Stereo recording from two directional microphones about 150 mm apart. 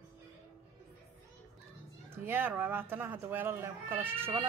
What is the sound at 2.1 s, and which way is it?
Speech, 15° right (ahead or behind).